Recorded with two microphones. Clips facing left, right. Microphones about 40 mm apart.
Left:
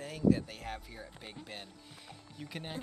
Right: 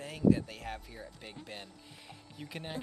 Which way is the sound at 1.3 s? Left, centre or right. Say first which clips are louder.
Right 1 dB; centre.